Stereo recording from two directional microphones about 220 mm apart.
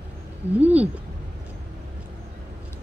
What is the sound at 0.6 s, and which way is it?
Speech, 5° right (ahead or behind).